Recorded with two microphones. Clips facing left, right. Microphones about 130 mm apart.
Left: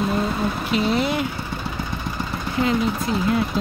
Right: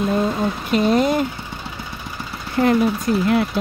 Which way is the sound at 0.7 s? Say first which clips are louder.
Right 5 dB; 45° right (ahead or behind).